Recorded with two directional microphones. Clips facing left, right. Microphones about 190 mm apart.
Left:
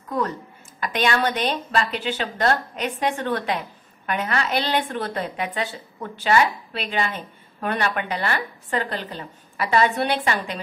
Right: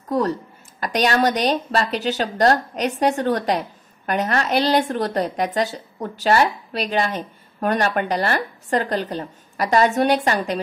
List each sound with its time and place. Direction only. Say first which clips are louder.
0.1 s speech: right 5 dB; 35° right (ahead or behind)